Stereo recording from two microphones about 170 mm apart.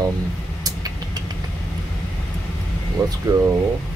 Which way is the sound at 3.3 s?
15° right (ahead or behind).